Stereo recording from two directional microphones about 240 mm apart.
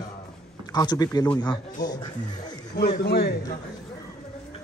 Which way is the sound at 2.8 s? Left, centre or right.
Left.